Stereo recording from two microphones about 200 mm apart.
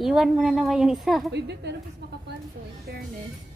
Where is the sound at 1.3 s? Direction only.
60° right (ahead or behind).